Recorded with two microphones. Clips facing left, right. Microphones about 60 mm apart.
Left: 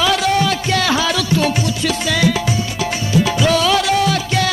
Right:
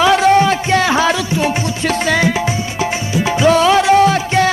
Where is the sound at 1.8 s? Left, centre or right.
Right.